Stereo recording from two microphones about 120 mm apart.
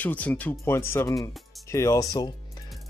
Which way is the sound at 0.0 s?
15° left (ahead or behind).